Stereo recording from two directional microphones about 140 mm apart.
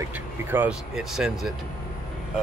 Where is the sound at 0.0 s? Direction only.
15° right (ahead or behind).